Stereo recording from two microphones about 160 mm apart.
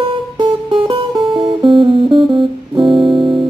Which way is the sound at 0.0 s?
35° right (ahead or behind).